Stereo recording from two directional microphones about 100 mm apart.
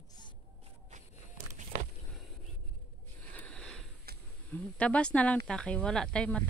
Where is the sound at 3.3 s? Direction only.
10° left (ahead or behind).